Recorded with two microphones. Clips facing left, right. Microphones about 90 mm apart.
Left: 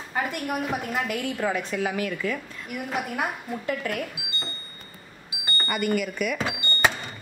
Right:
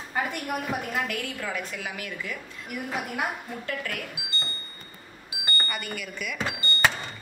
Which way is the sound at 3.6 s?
20° left (ahead or behind).